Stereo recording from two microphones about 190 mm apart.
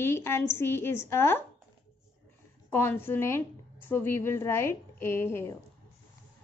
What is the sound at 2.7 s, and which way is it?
A woman's voice, 10° left (ahead or behind).